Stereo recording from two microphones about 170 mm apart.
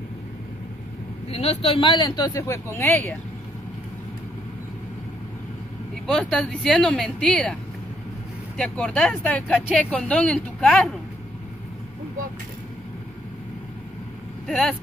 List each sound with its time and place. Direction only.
1.3 s speech: 35° left (ahead or behind); by 3.2 s 10° left (ahead or behind)
6.0 s speech: 5° left (ahead or behind)
8.5 s speech: 5° left (ahead or behind)